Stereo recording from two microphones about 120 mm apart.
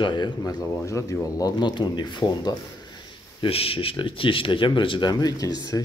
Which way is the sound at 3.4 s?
50° left (ahead or behind).